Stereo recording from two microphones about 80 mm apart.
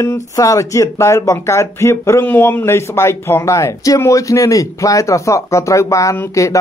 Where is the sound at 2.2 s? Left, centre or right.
Left.